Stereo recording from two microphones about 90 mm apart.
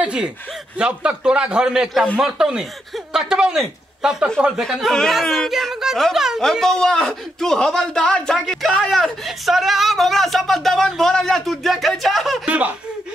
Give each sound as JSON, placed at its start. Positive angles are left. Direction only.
{"t": 0.0, "sound": "a man's voice", "side_deg": -10}
{"t": 6.4, "sound": "a man's voice", "side_deg": 5}
{"t": 12.4, "sound": "a man's voice", "side_deg": -15}